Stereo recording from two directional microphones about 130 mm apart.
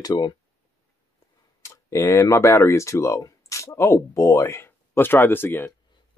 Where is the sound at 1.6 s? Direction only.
25° left (ahead or behind).